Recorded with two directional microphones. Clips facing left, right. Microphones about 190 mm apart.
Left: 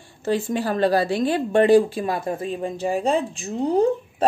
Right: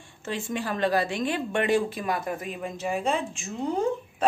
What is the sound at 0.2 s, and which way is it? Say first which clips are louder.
A woman's voice: left 8 dB; 35° left (ahead or behind).